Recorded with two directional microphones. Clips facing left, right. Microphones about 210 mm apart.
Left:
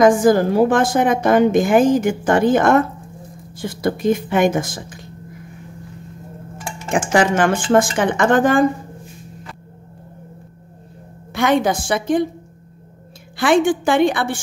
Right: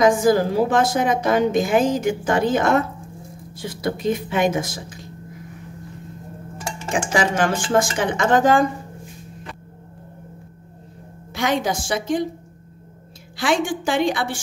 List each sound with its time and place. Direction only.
0.0 s a woman's voice: 50° left (ahead or behind)
6.9 s speech: 55° left (ahead or behind)
11.3 s speech: 55° left (ahead or behind)
13.4 s speech: 55° left (ahead or behind)